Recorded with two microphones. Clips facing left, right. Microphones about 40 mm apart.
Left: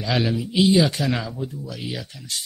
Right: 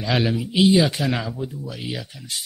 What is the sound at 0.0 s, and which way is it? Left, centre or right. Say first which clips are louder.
Speech: right 1 dB; centre.